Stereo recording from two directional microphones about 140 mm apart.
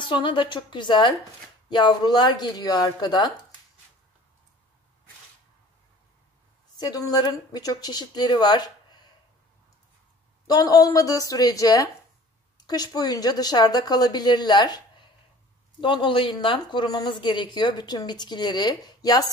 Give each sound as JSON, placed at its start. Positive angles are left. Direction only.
{"t": 0.0, "sound": "a woman's voice", "side_deg": 35}
{"t": 6.8, "sound": "speech", "side_deg": 25}
{"t": 10.4, "sound": "speech", "side_deg": 25}
{"t": 15.8, "sound": "a woman's voice", "side_deg": 35}